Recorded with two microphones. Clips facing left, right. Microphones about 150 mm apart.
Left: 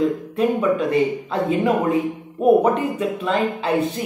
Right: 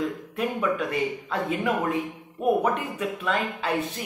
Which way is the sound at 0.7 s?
30° left (ahead or behind).